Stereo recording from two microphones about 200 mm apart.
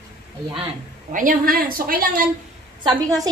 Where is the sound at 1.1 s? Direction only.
45° right (ahead or behind).